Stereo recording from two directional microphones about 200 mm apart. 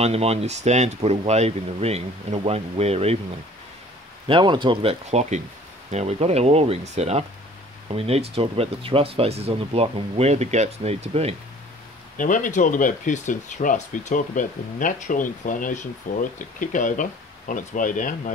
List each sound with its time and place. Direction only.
0.0 s speech: 30° right (ahead or behind)
4.3 s speech: 25° right (ahead or behind)
12.2 s speech: 40° left (ahead or behind)